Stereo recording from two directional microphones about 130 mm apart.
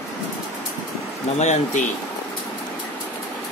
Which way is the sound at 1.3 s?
60° left (ahead or behind).